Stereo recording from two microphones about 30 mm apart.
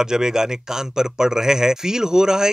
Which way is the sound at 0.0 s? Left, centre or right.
Right.